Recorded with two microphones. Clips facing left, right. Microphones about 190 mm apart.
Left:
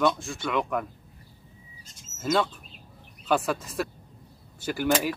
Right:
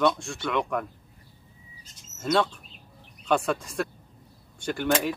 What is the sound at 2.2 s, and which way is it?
Speech, 5° left (ahead or behind).